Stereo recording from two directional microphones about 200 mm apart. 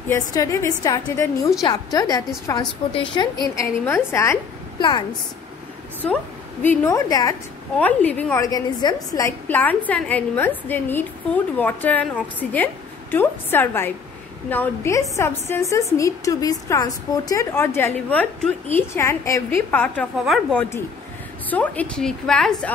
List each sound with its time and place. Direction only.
0.1 s a woman's voice: 15° left (ahead or behind)
6.0 s a woman's voice: 5° left (ahead or behind)
6.7 s a woman's voice: 15° left (ahead or behind)
7.8 s a woman's voice: 10° left (ahead or behind)
8.5 s a woman's voice: 20° left (ahead or behind)